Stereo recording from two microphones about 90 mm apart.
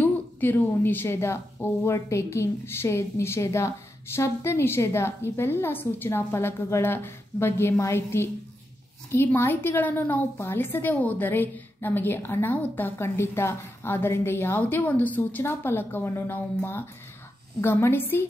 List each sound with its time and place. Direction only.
0.0 s a woman's voice: 20° left (ahead or behind)